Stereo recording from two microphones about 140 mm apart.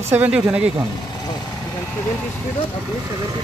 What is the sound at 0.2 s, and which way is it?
Speech, 10° right (ahead or behind).